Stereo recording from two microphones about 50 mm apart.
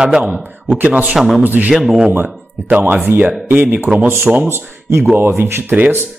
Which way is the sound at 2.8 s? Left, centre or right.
Right.